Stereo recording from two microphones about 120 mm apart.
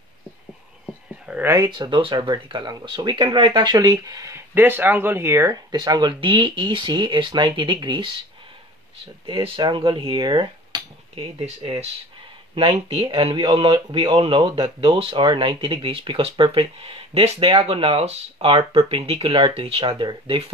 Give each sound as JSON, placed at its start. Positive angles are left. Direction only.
{"t": 1.2, "sound": "a sound", "side_deg": -10}
{"t": 1.7, "sound": "speech", "side_deg": -40}
{"t": 3.4, "sound": "speech", "side_deg": -35}
{"t": 4.6, "sound": "speech", "side_deg": -15}
{"t": 11.3, "sound": "speech", "side_deg": -55}